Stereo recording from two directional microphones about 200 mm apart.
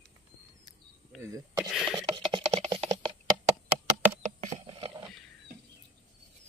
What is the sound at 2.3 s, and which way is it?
Computer keyboard, 25° right (ahead or behind).